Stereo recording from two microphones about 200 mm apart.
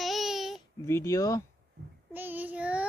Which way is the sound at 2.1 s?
10° right (ahead or behind).